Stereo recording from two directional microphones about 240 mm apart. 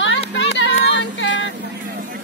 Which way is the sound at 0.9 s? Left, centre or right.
Left.